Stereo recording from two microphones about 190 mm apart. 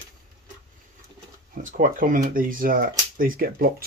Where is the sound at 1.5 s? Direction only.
45° right (ahead or behind).